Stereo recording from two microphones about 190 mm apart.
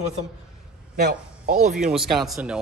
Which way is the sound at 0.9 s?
45° right (ahead or behind).